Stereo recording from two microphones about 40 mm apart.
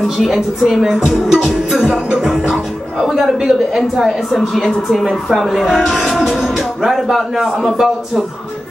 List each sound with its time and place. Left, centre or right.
0.2 s speech: centre
2.1 s a man's voice: centre